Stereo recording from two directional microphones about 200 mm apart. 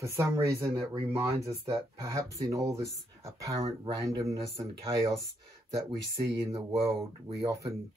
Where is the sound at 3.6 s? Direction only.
25° right (ahead or behind).